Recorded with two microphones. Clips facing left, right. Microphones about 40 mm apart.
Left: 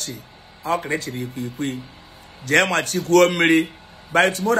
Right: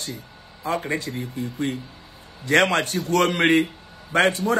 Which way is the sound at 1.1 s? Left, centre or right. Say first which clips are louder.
Left 1 dB; left.